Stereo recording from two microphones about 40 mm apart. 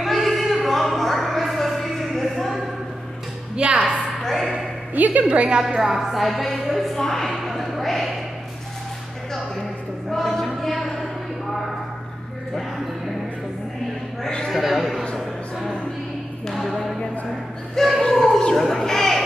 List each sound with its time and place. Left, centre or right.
0.0 s music: centre
3.5 s music: right
4.2 s a sound: centre
4.9 s a woman's voice: right
5.8 s a woman's voice: centre
6.2 s music: centre
7.0 s a woman's voice: centre
7.4 s a sound: centre
10.1 s choir: centre
14.5 s a sound: centre
16.5 s basketball bounce: centre
17.7 s a sound: centre